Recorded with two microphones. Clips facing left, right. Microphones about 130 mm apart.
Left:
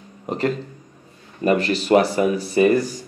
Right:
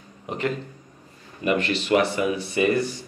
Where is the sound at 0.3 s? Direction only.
40° left (ahead or behind).